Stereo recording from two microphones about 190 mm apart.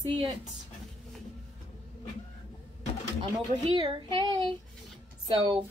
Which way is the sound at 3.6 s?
25° right (ahead or behind).